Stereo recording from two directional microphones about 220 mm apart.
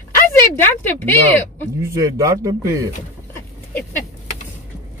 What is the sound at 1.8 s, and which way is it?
A man's voice, 15° right (ahead or behind).